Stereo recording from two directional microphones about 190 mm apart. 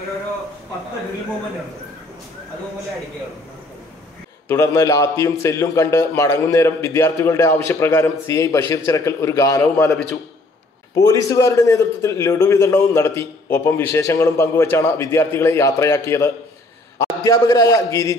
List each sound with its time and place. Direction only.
4.5 s a man's voice: 15° left (ahead or behind)
11.0 s a man's voice: 15° left (ahead or behind)